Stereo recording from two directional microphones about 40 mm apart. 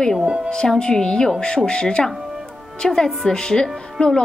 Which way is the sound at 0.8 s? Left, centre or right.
Centre.